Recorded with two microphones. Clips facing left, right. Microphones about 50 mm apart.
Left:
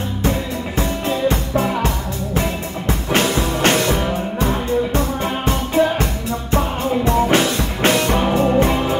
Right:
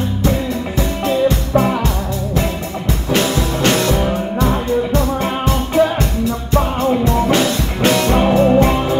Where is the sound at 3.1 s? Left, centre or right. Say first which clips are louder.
Right 1 dB; left.